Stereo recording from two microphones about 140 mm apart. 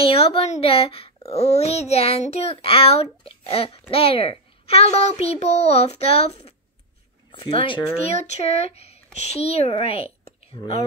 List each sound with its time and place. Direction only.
0.0 s speech: 45° left (ahead or behind)